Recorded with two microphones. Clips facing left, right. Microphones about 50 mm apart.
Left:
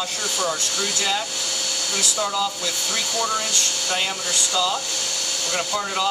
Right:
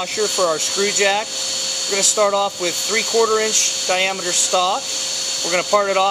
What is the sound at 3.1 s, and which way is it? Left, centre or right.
Speech, centre.